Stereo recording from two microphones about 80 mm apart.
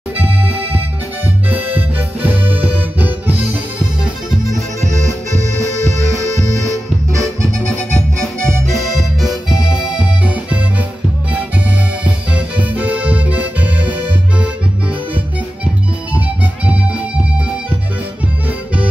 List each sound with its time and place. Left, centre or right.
1.5 s music: right
6.1 s music: right
7.7 s music: centre
9.2 s music: centre
15.6 s music: centre